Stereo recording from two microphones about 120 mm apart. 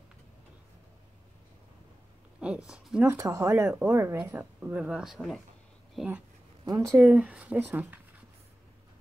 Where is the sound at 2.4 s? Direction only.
10° right (ahead or behind).